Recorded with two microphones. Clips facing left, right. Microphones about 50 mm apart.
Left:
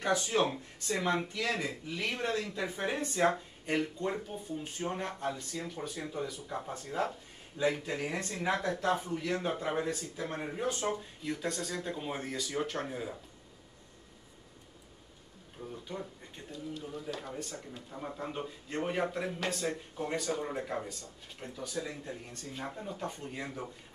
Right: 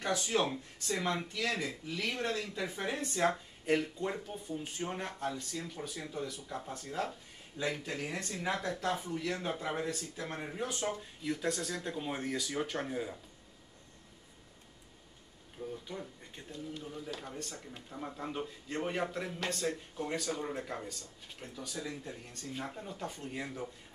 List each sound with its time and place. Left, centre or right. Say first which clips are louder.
0.0 s speech: left 3 dB; centre
4.0 s speech: left 2 dB; centre
5.1 s speech: left 1 dB; centre
15.6 s speech: left 1 dB; centre
16.8 s speech: left 3 dB; centre